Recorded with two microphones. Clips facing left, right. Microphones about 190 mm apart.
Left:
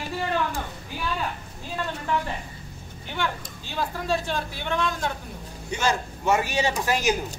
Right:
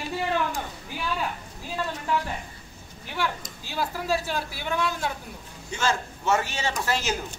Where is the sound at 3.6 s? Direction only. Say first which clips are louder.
Even; 10° right (ahead or behind).